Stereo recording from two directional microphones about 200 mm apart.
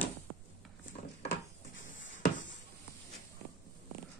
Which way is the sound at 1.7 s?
70° left (ahead or behind).